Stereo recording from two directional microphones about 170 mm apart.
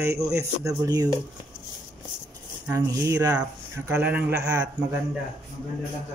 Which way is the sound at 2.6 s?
20° right (ahead or behind).